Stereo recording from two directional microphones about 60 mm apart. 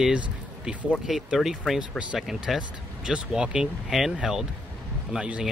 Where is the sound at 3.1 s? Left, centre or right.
Centre.